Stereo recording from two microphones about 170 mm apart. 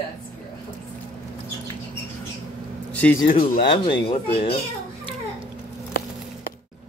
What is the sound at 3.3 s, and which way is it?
Speech, 35° left (ahead or behind).